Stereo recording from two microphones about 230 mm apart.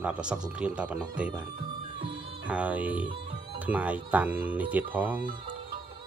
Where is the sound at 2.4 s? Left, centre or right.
Centre.